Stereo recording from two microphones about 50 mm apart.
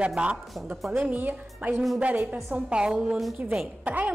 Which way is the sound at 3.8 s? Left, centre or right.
Right.